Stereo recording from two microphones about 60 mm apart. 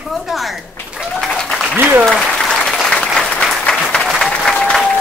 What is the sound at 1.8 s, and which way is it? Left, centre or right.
Speech, right.